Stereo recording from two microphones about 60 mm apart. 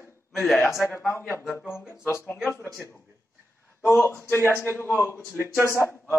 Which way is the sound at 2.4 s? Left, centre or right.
Left.